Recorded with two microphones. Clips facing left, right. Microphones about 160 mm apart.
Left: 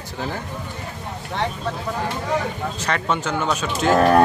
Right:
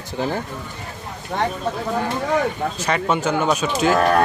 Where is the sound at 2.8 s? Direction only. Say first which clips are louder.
Right 3 dB; 10° right (ahead or behind).